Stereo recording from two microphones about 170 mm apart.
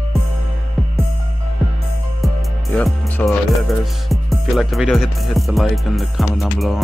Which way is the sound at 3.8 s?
Centre (ahead or behind).